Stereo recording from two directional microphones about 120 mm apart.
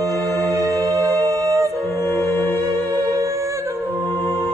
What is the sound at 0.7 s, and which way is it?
Music, 25° right (ahead or behind).